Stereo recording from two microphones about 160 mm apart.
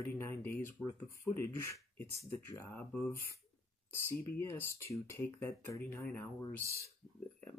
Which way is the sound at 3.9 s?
15° left (ahead or behind).